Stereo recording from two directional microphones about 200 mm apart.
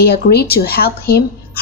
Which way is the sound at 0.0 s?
50° left (ahead or behind).